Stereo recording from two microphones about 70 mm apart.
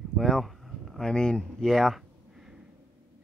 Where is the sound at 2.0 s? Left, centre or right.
Centre.